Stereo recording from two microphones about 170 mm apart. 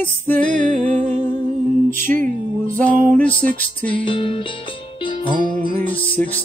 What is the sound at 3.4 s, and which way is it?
Music, 55° right (ahead or behind).